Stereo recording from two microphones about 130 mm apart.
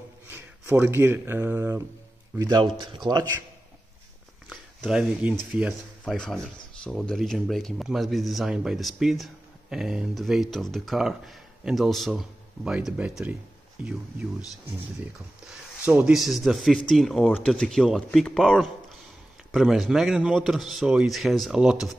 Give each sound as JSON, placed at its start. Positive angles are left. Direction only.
{"t": 0.3, "sound": "speech", "side_deg": -15}
{"t": 2.6, "sound": "speech", "side_deg": -35}
{"t": 4.5, "sound": "a sound", "side_deg": 0}
{"t": 5.5, "sound": "speech", "side_deg": -10}
{"t": 6.0, "sound": "speech", "side_deg": 5}
{"t": 15.8, "sound": "speech", "side_deg": -10}